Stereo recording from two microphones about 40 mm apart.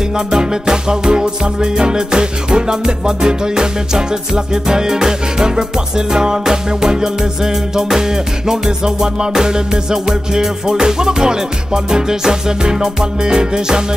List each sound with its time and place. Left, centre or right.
0.3 s music: centre